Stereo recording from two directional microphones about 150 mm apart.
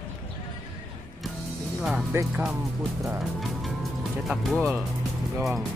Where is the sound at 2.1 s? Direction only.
10° right (ahead or behind).